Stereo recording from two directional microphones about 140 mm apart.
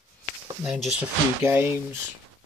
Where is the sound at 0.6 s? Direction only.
5° right (ahead or behind).